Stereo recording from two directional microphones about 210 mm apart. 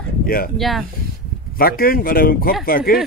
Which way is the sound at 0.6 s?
Centre (ahead or behind).